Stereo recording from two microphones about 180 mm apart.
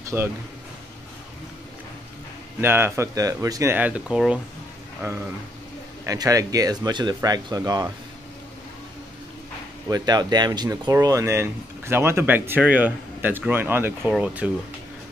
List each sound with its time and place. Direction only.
0.1 s speech: 10° right (ahead or behind)
2.6 s speech: 10° right (ahead or behind)
6.0 s speech: 20° right (ahead or behind)
9.8 s speech: 20° right (ahead or behind)